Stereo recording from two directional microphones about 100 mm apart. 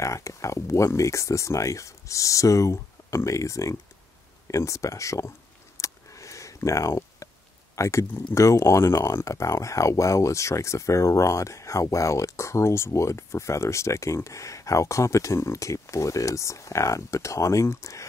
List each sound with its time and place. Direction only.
0.0 s speech: 30° left (ahead or behind)
5.8 s a sound: 30° left (ahead or behind)
7.7 s speech: 30° left (ahead or behind)